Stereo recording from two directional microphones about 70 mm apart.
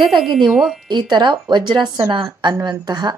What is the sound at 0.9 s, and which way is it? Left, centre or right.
Speech, right.